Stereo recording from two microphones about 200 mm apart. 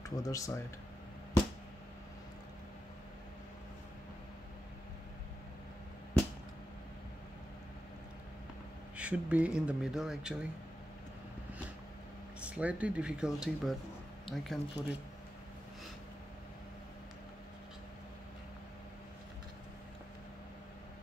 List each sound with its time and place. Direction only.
0.0 s speech: 15° left (ahead or behind)
8.9 s speech: 5° right (ahead or behind)
12.4 s speech: 5° right (ahead or behind)